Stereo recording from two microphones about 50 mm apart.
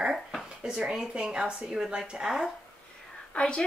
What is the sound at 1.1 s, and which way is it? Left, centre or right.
Speech, centre.